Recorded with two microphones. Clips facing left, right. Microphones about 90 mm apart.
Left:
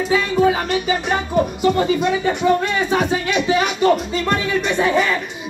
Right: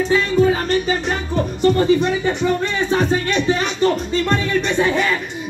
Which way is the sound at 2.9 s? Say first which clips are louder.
Right 3 dB; 10° left (ahead or behind).